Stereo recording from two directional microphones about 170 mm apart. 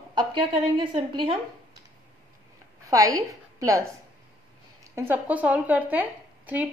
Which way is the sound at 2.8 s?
20° right (ahead or behind).